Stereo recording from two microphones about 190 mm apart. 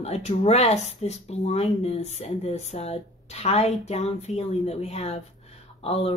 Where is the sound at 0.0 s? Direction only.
35° left (ahead or behind).